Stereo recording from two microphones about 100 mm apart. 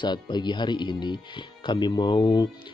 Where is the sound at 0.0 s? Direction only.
50° left (ahead or behind).